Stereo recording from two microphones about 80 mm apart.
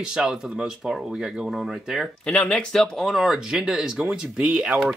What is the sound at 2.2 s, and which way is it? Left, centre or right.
Speech, centre.